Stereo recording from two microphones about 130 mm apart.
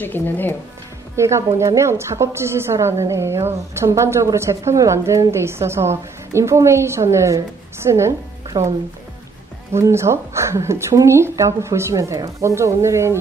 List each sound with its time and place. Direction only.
0.0 s speech: 15° left (ahead or behind)
1.1 s a woman's voice: 20° right (ahead or behind)
9.8 s a woman's voice: 20° right (ahead or behind)